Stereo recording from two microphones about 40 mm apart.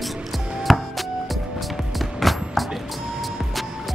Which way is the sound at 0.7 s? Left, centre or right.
Centre.